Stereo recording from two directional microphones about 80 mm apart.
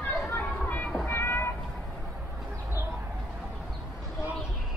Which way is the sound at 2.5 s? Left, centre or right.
Right.